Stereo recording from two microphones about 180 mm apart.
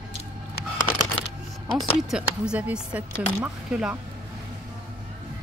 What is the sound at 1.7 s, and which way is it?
Speech, 5° left (ahead or behind).